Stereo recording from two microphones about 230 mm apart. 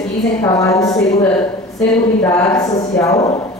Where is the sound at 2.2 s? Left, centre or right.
Centre.